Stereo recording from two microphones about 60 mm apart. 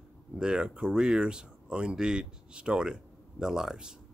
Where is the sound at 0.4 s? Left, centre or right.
Centre.